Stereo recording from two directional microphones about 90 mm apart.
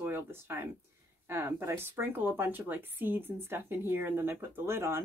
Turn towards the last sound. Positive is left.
turn(degrees=-30)  # may be behind; listen again after turning